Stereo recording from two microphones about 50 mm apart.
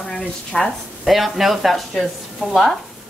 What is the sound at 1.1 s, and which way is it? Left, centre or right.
Speech, centre.